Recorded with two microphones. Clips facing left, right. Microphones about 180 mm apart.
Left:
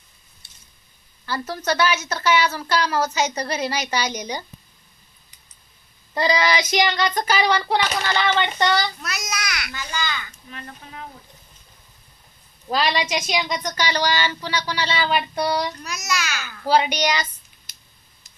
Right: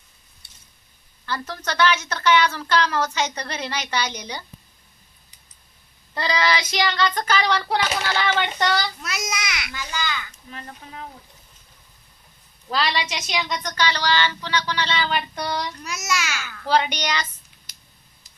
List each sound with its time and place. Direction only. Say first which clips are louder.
1.2 s speech: left 3 dB; 10° left (ahead or behind)
6.1 s speech: left 3 dB; 15° left (ahead or behind); by 8.9 s centre (ahead or behind)
9.0 s a sound: right 1 dB; 25° right (ahead or behind)
12.7 s speech: left 3 dB; 15° left (ahead or behind)
15.8 s a child's voice: even; 25° right (ahead or behind)
16.6 s speech: left 3 dB; 10° left (ahead or behind)